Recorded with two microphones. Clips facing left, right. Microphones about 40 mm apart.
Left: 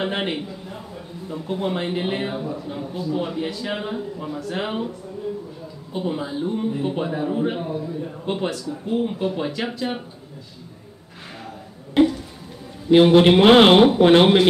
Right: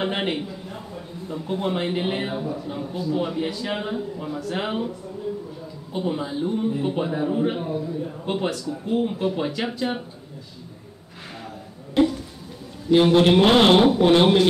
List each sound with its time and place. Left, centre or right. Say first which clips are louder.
0.0 s a man's voice: even; centre
5.9 s a man's voice: even; centre
11.9 s a sound: left 2 dB; centre
12.9 s speech: left 3 dB; left